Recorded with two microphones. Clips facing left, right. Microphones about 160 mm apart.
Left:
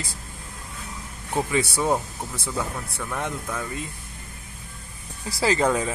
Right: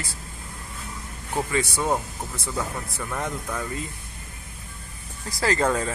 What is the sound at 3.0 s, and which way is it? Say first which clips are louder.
Speech: even; centre (ahead or behind).